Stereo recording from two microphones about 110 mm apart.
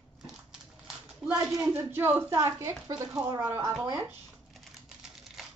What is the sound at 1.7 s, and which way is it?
Speech, 20° right (ahead or behind).